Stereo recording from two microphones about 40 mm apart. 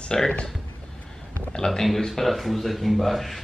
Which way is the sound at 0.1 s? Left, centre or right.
Centre.